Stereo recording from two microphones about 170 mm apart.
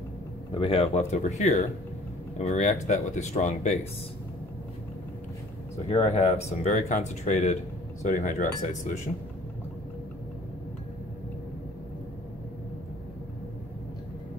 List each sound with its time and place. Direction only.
0.6 s speech: 35° left (ahead or behind)
5.9 s speech: 35° left (ahead or behind)